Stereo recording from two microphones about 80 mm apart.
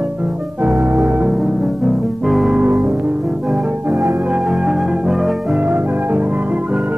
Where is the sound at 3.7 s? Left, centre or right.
Right; by 5.5 s centre.